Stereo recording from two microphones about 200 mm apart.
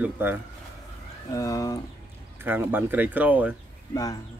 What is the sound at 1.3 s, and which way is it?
Speech, 15° left (ahead or behind).